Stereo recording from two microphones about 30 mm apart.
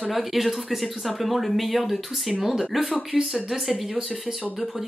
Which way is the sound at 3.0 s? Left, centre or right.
Right.